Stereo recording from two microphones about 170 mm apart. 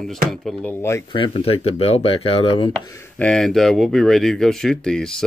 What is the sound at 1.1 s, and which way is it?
Speech, 30° left (ahead or behind).